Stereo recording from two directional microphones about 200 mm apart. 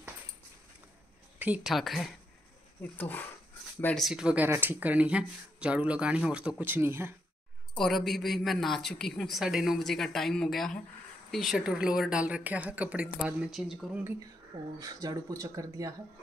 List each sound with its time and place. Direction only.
1.4 s a woman's voice: 5° right (ahead or behind)
7.8 s a woman's voice: centre (ahead or behind)
14.8 s speech: 20° right (ahead or behind)